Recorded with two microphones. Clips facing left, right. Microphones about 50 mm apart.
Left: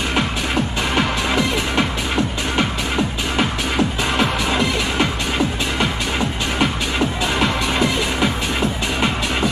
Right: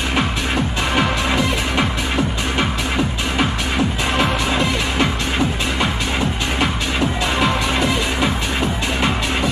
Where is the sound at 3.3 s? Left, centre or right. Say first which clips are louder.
Left 1 dB; centre.